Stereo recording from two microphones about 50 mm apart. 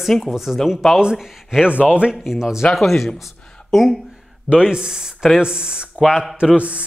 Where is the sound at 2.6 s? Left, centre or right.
Centre.